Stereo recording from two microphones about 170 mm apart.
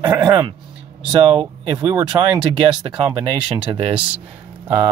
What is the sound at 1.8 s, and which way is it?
Speech, 25° right (ahead or behind).